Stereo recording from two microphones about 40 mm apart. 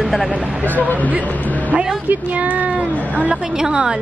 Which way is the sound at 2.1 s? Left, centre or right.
Right.